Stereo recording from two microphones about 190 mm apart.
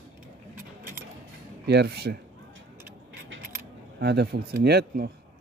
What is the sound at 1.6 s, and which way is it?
Speech, 60° right (ahead or behind).